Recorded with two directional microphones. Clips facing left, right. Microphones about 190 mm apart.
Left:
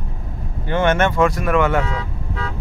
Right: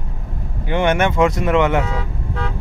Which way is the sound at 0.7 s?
15° right (ahead or behind).